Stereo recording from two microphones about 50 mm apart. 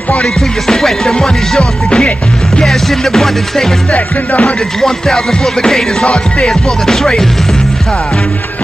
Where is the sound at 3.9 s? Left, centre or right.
Left.